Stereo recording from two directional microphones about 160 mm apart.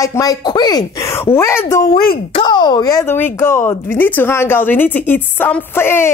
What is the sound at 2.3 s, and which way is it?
Speech, 30° left (ahead or behind).